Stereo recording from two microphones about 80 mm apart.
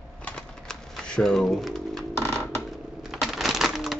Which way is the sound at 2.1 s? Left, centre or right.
Left.